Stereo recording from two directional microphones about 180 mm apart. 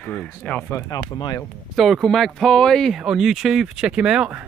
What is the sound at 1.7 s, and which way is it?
Speech, centre (ahead or behind).